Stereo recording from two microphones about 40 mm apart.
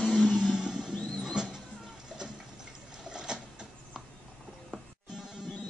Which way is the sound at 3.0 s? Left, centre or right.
Centre.